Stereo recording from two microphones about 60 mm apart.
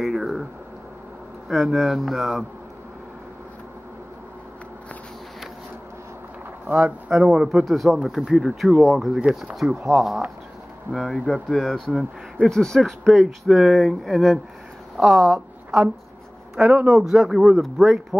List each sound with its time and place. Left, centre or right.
0.0 s a sound: centre
1.5 s speech: centre
6.7 s speech: right
7.2 s speech: centre
7.4 s speech: centre
10.9 s speech: centre
13.2 s speech: centre
16.5 s speech: right
17.1 s speech: centre